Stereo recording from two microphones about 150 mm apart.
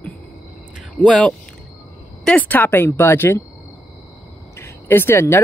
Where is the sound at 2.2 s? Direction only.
10° left (ahead or behind).